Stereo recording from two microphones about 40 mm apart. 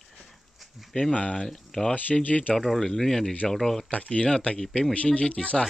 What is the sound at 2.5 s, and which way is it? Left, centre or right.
Speech, centre.